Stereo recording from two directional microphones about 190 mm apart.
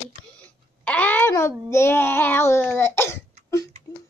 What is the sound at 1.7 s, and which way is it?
Speech, 15° left (ahead or behind).